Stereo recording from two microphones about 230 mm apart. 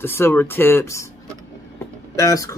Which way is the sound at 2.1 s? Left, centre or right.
Centre.